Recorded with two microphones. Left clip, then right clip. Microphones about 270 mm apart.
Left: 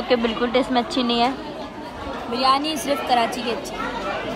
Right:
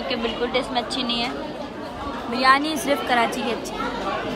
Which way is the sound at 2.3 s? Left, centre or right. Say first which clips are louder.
Right 1 dB; centre.